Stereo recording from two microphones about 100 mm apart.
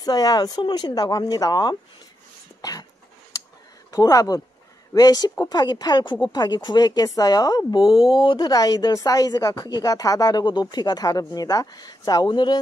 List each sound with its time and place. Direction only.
0.0 s speech: 40° left (ahead or behind)
3.9 s a woman's voice: 35° left (ahead or behind)